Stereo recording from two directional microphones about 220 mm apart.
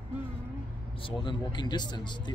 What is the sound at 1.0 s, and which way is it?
Speech, 20° left (ahead or behind).